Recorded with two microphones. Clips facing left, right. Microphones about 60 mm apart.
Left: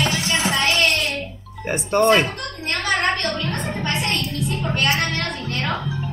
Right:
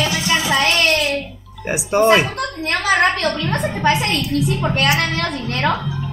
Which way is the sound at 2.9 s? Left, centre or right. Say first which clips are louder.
Right 5 dB; right.